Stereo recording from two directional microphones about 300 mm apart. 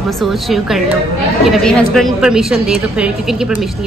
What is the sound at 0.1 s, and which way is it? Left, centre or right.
A woman's voice, centre.